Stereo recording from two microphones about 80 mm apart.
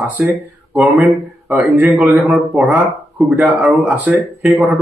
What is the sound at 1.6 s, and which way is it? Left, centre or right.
Speech, right.